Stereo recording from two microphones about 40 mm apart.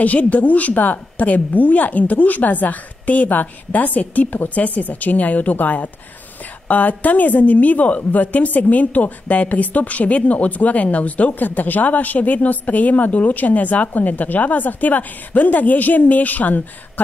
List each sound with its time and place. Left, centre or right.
0.0 s a woman's voice: left